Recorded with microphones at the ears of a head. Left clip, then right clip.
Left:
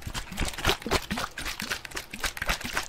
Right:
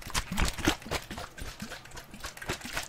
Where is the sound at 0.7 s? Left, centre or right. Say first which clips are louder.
Left 7 dB; left.